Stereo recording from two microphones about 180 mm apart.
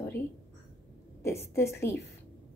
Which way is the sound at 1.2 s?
15° left (ahead or behind).